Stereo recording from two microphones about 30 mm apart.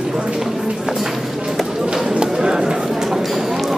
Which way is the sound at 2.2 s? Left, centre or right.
Right.